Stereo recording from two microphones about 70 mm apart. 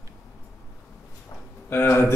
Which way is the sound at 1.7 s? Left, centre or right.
Left.